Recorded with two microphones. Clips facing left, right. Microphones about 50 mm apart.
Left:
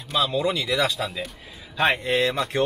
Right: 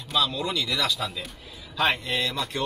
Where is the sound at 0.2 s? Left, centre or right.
Centre.